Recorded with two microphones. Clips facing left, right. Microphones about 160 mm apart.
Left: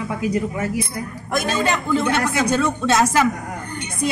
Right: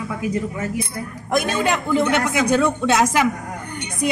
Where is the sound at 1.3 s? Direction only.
15° right (ahead or behind).